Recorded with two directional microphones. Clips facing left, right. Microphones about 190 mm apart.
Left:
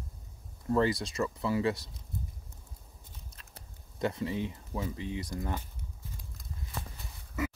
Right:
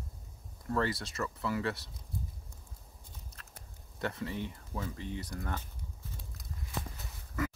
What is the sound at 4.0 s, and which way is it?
Speech, 15° left (ahead or behind).